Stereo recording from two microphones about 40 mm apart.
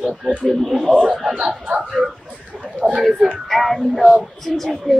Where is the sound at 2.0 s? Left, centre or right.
Centre.